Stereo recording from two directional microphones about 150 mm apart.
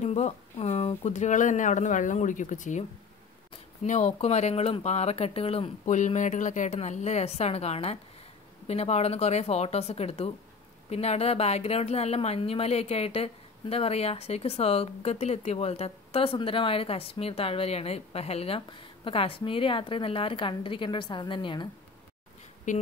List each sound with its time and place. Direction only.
0.0 s speech: 45° left (ahead or behind)
3.8 s speech: 50° left (ahead or behind)
5.9 s a woman's voice: 55° left (ahead or behind); by 21.6 s 35° left (ahead or behind)
22.7 s speech: 60° left (ahead or behind)